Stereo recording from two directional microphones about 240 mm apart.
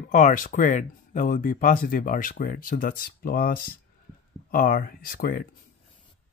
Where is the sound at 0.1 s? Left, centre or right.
Left.